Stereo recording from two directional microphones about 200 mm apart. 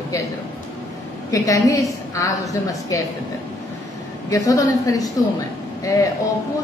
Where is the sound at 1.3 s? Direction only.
15° left (ahead or behind).